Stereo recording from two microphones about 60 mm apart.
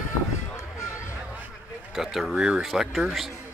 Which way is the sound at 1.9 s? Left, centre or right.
Centre.